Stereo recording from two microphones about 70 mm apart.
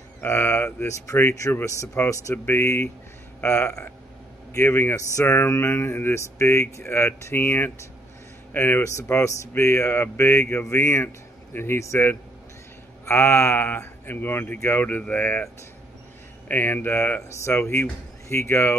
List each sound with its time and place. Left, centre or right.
0.2 s speech: left
1.4 s speech: left
2.0 s speech: left
5.2 s speech: left
8.8 s speech: left
9.5 s speech: left
11.8 s speech: left
16.4 s speech: left